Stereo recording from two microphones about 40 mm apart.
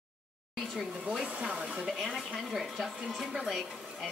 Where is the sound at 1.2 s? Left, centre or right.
Right.